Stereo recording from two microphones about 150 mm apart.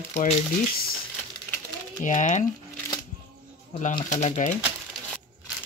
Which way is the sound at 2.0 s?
55° left (ahead or behind).